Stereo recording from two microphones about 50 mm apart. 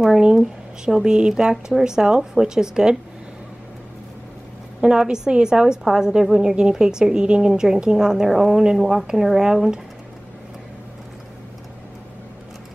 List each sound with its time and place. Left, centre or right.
0.2 s a sound: centre
0.9 s a woman's voice: centre
4.8 s a woman's voice: centre